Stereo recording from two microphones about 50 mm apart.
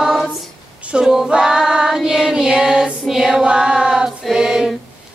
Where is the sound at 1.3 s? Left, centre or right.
Centre.